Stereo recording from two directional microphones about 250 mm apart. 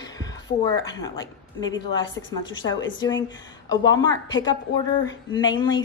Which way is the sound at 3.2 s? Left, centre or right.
Centre.